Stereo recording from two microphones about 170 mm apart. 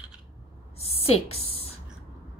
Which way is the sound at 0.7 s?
35° left (ahead or behind).